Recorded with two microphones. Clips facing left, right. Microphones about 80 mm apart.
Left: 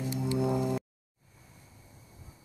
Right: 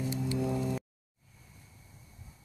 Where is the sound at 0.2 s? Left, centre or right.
Centre.